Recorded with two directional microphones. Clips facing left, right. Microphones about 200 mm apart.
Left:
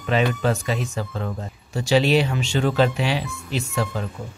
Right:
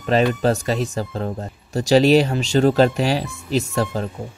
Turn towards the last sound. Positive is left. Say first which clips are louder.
# right 4 dB
turn(degrees=-40)  # may be behind; listen again after turning